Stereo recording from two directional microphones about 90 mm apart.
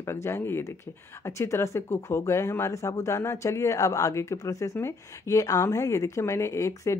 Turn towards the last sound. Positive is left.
turn(degrees=35)  # may be behind; listen again after turning